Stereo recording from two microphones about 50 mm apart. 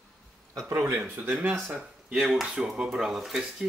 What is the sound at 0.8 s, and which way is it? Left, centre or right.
Speech, right.